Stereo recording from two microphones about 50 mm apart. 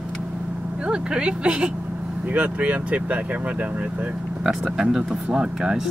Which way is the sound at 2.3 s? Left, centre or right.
Right.